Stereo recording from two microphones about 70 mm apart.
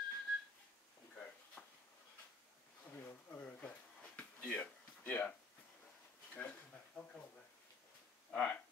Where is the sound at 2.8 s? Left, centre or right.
Left.